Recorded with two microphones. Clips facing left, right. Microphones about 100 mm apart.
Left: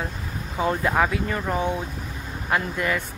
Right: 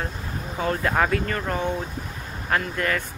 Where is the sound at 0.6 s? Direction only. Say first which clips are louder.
Left 1 dB; 10° left (ahead or behind).